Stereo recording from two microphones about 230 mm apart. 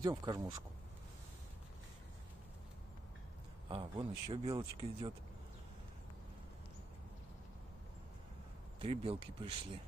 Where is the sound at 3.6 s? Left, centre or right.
Right.